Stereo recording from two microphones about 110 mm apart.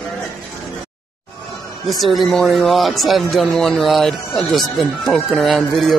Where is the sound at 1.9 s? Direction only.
Centre (ahead or behind).